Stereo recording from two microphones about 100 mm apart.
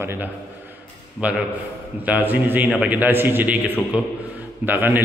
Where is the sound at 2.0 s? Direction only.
15° right (ahead or behind).